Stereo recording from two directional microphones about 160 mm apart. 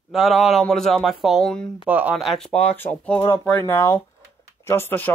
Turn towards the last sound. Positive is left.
turn(degrees=10)  # may be behind; listen again after turning